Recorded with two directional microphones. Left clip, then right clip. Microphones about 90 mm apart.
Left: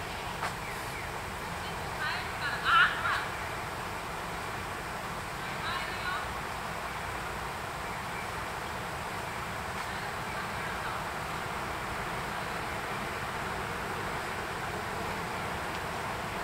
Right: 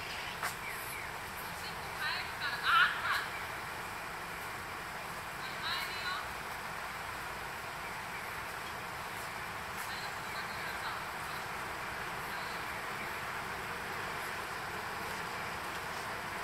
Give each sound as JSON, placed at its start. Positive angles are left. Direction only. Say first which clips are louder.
{"t": 2.6, "sound": "crow", "louder": "left 4 dB", "side_deg": -30}